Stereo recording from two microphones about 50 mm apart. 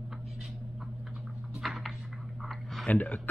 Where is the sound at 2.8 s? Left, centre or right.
Left.